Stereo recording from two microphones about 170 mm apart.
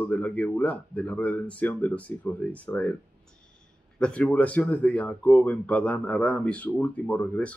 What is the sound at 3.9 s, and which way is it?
Speech, 5° left (ahead or behind).